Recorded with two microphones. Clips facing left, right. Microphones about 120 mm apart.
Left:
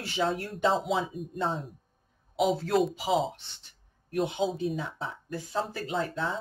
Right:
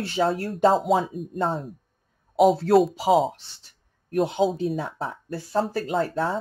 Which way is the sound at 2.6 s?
35° right (ahead or behind).